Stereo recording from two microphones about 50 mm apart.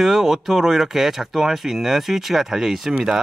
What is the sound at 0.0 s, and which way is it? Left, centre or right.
A man's voice, centre.